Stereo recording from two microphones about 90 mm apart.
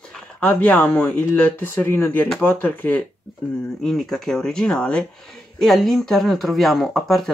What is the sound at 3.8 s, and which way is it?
Speech, 5° left (ahead or behind).